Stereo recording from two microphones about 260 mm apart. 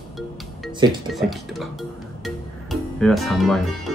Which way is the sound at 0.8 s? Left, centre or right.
Centre.